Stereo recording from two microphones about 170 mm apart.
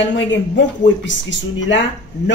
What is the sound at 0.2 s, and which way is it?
Speech, 90° left.